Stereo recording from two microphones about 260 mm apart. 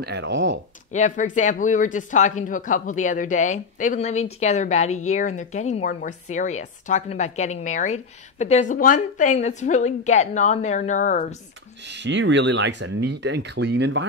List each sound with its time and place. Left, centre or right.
0.0 s speech: right
0.9 s speech: left
11.9 s speech: right